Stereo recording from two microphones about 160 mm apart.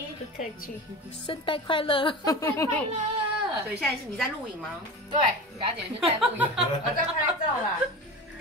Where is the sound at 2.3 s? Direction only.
20° left (ahead or behind).